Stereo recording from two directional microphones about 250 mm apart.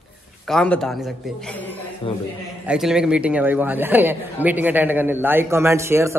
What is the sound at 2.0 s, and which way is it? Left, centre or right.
Speech, left.